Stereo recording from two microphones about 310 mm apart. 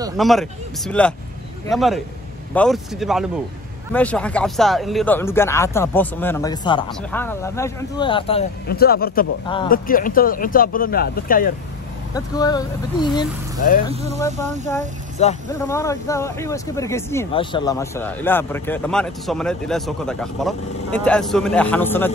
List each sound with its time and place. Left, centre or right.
0.2 s speech: centre
8.6 s speech: left
12.1 s speech: centre
15.2 s speech: left
15.6 s speech: centre